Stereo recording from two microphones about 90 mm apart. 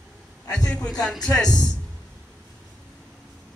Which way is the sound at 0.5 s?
10° left (ahead or behind).